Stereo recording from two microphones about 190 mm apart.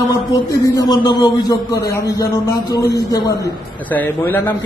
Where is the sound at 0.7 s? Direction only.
20° left (ahead or behind).